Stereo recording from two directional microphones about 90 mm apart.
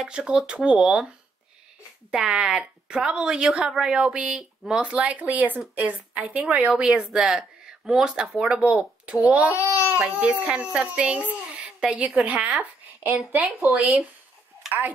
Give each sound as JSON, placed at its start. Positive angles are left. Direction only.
{"t": 0.0, "sound": "a woman's voice", "side_deg": -5}
{"t": 2.0, "sound": "a woman's voice", "side_deg": -10}